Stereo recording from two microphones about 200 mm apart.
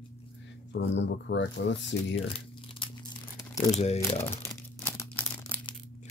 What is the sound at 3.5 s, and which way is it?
Crumpling, 15° left (ahead or behind).